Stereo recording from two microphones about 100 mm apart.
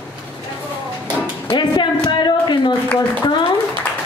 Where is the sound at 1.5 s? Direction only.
50° left (ahead or behind).